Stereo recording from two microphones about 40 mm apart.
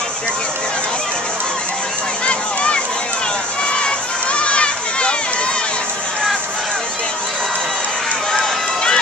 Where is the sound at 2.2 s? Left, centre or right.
Left.